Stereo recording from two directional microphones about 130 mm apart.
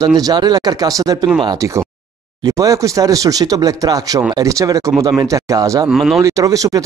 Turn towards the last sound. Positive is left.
turn(degrees=-25)  # may be behind; listen again after turning